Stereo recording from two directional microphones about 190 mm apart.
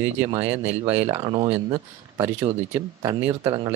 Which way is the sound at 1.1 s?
20° right (ahead or behind).